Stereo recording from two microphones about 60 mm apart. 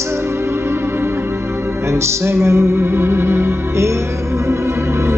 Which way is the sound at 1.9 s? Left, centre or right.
Right.